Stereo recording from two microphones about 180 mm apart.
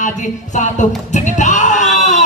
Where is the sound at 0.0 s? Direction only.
40° left (ahead or behind).